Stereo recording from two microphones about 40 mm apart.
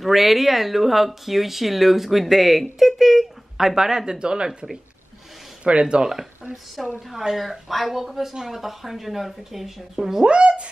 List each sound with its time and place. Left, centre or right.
0.0 s speech: centre; by 4.5 s right
5.6 s speech: right
7.1 s speech: centre
10.2 s speech: right